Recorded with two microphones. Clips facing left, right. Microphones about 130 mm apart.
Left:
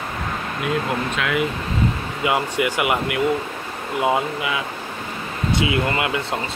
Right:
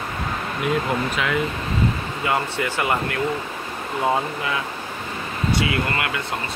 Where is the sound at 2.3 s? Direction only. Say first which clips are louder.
Left 3 dB; 15° left (ahead or behind).